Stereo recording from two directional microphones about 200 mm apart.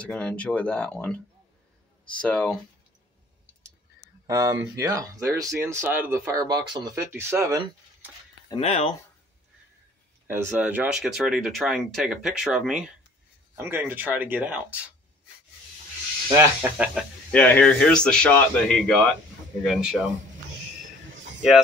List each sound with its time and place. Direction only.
0.0 s speech: 5° left (ahead or behind)
2.2 s speech: 5° left (ahead or behind)
4.3 s speech: 15° right (ahead or behind)
8.5 s speech: 30° left (ahead or behind)
10.2 s speech: 10° right (ahead or behind)
16.3 s speech: 10° right (ahead or behind)
17.3 s speech: 5° left (ahead or behind)